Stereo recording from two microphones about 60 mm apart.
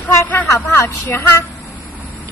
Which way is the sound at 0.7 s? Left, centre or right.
Left.